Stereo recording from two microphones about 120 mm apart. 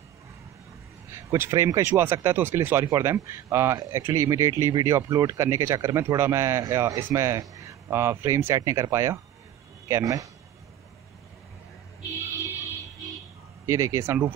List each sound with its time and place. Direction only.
1.1 s speech: 25° right (ahead or behind)
13.7 s speech: 25° right (ahead or behind)